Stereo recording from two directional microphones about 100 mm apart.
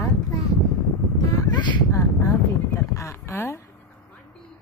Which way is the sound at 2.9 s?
30° left (ahead or behind).